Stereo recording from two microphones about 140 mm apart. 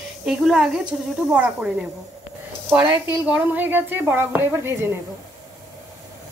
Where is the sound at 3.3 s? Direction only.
15° right (ahead or behind).